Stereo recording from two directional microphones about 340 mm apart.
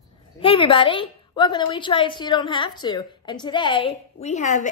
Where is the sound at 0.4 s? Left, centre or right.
Centre.